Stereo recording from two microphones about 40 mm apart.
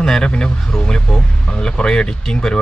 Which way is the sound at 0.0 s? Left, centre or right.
Centre.